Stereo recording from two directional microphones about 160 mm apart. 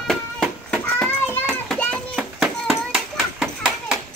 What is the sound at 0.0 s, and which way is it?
Children playing, 5° left (ahead or behind).